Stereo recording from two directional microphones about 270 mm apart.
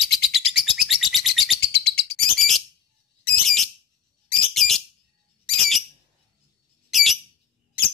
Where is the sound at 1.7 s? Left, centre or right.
Left.